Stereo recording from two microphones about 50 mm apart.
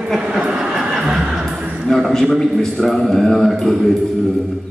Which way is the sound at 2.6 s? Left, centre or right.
Centre.